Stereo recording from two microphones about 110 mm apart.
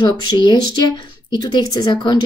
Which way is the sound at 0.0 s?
45° left (ahead or behind).